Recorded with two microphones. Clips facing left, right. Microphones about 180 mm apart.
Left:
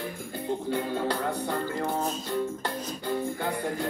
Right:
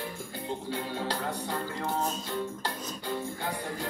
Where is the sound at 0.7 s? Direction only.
55° left (ahead or behind).